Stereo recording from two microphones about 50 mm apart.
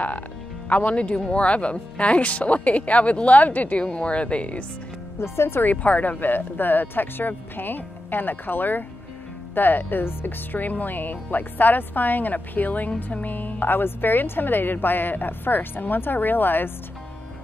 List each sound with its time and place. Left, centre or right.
0.7 s speech: left
5.2 s speech: left
5.6 s speech: left